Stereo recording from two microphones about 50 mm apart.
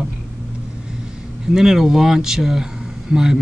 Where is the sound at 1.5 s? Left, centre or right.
Centre.